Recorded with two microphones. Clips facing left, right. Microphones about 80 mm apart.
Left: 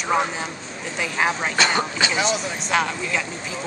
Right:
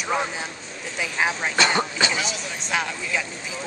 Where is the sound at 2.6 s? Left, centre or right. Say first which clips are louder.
Left 3 dB; centre.